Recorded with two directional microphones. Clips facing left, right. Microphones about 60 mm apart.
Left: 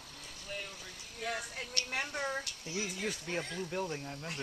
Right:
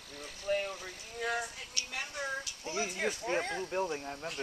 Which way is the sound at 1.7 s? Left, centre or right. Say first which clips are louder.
Left 6 dB; left.